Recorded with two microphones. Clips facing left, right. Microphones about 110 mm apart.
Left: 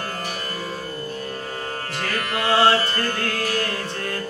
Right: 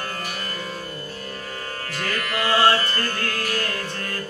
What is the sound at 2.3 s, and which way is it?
Music, 20° left (ahead or behind).